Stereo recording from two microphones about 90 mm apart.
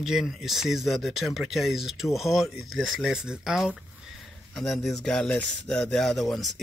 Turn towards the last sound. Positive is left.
turn(degrees=0)  # may be behind; listen again after turning